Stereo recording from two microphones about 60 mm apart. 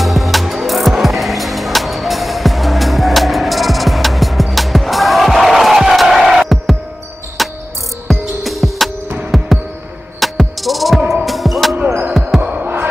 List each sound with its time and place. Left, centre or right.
0.0 s music: centre
7.4 s cricket: centre
8.1 s music: centre
12.4 s music: right